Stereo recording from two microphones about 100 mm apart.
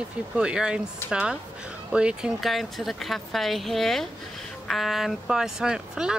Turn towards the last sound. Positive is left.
turn(degrees=-5)  # may be behind; listen again after turning